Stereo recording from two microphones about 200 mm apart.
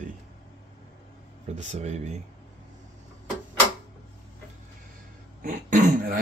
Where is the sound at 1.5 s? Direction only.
35° right (ahead or behind).